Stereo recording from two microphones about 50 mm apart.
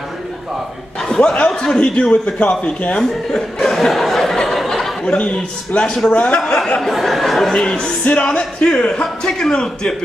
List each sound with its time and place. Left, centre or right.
1.0 s a sound: centre
1.5 s a man's voice: centre
3.0 s speech: centre
4.6 s a sound: centre
5.0 s a man's voice: left
6.8 s speech: centre
7.6 s music: centre
8.0 s a man's voice: left